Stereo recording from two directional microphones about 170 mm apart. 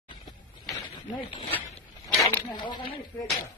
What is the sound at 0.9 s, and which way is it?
Speech, 25° left (ahead or behind).